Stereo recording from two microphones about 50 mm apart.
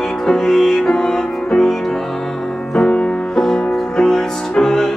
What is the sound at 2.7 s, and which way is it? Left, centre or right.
Music, centre.